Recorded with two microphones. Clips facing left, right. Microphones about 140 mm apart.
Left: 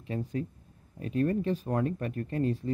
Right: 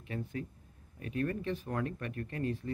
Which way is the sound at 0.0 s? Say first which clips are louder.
Left 6 dB; 35° left (ahead or behind).